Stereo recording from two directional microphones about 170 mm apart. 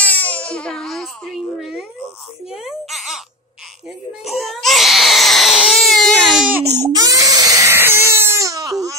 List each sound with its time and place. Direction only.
0.0 s speech: 10° left (ahead or behind)
4.2 s baby cry: centre (ahead or behind)
7.0 s baby cry: 20° right (ahead or behind)